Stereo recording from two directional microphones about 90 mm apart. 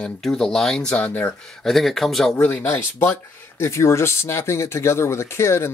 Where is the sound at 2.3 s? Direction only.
20° left (ahead or behind).